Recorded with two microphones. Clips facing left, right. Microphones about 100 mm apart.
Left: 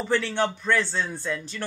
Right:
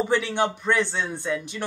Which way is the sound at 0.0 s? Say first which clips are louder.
Right 2 dB; 15° right (ahead or behind).